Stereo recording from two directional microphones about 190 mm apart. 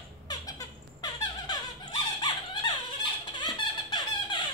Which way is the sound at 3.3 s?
25° left (ahead or behind).